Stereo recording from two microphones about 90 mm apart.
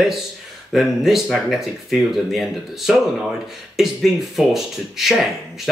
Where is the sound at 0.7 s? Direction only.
Centre (ahead or behind).